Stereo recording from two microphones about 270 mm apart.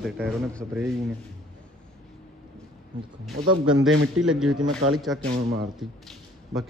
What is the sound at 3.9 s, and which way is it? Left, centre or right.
Speech, right.